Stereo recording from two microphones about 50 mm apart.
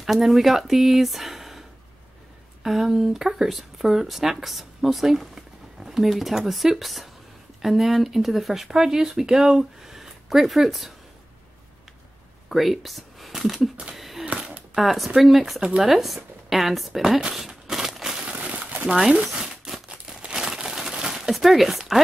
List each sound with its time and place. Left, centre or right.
0.0 s speech: centre
2.6 s speech: centre
12.4 s speech: centre
13.3 s a sound: centre
14.8 s speech: centre
17.2 s crumpling: centre
18.2 s a sound: right
18.9 s crumpling: centre
20.2 s crumpling: centre
20.4 s crumpling: centre